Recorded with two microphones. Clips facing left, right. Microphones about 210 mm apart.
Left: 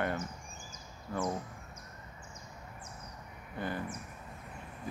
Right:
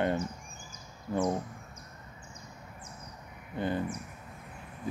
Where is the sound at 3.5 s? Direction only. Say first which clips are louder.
Right 6 dB; 20° right (ahead or behind).